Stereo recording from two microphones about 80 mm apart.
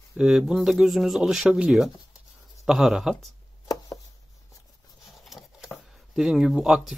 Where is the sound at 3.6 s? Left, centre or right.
Left.